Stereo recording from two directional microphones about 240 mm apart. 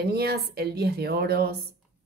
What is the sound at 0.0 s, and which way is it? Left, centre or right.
A woman's voice, right.